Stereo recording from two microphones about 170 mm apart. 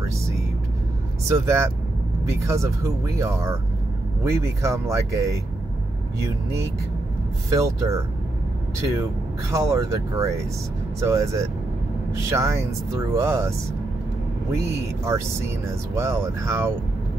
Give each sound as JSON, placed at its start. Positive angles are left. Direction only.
{"t": 1.3, "sound": "speech", "side_deg": -15}
{"t": 7.4, "sound": "speech", "side_deg": -20}
{"t": 9.5, "sound": "speech", "side_deg": -20}
{"t": 15.0, "sound": "speech", "side_deg": -15}